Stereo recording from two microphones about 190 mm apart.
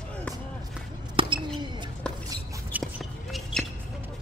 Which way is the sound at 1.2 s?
25° right (ahead or behind).